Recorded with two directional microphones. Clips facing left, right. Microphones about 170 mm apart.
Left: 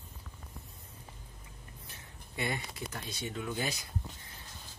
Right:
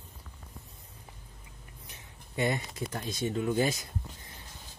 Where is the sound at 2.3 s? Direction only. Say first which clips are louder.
Right 6 dB; 35° right (ahead or behind).